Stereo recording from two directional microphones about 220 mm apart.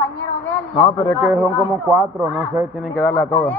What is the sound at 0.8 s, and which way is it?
Speech, 20° left (ahead or behind).